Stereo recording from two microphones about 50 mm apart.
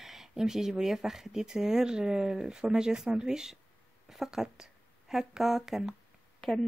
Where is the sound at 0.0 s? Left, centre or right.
Centre.